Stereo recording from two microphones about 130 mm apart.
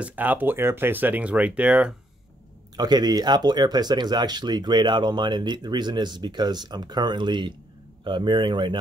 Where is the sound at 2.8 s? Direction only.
30° right (ahead or behind).